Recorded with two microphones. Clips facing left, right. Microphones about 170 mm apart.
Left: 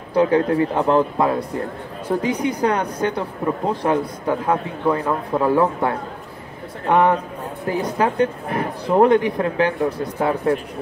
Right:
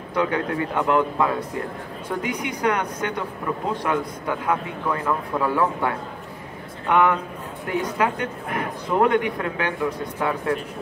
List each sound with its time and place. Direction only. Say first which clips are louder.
0.1 s a man's voice: left 7 dB; 30° left (ahead or behind)
6.9 s a man's voice: left 3 dB; 35° left (ahead or behind)